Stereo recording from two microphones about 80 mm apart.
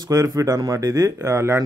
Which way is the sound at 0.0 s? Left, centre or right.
Right.